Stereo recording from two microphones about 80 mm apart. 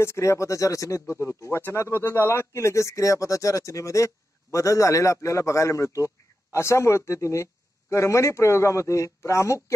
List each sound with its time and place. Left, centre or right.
0.0 s speech: left